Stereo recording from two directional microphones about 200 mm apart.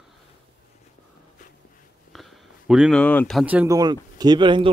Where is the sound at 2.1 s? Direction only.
Centre (ahead or behind).